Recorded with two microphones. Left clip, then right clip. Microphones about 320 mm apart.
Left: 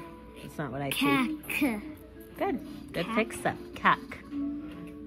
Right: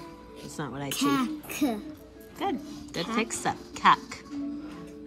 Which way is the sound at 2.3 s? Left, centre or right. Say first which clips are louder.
Even; centre.